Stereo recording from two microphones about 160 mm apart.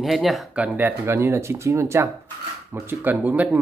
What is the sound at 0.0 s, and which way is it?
Speech, centre (ahead or behind).